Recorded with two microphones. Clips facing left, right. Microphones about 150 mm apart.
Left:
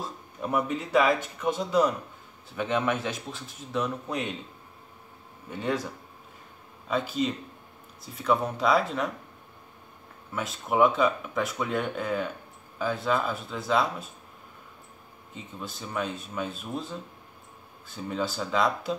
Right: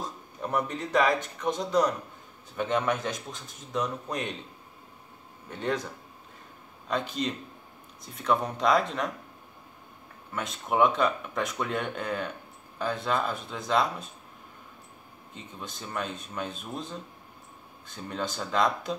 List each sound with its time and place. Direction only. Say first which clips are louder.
0.4 s a man's voice: left 2 dB; 10° left (ahead or behind)
5.5 s a man's voice: left 1 dB; 5° left (ahead or behind)
6.9 s speech: left 2 dB; 5° left (ahead or behind)
10.3 s speech: left 1 dB; 5° left (ahead or behind)
15.3 s speech: left 2 dB; 5° left (ahead or behind)